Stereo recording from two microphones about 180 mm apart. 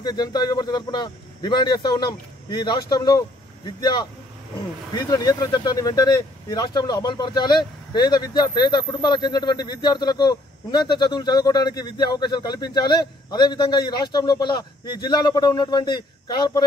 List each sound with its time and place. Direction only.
0.0 s speech: 20° left (ahead or behind)